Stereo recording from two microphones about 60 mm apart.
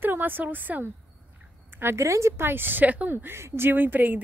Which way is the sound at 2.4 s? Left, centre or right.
Right.